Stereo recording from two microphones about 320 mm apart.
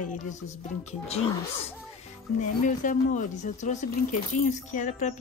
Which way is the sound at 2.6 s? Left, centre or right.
Left.